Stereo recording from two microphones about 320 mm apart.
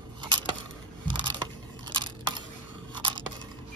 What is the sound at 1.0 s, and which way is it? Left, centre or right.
Crushing, centre.